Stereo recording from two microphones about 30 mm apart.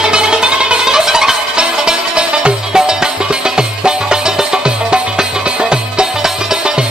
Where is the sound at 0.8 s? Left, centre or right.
Centre.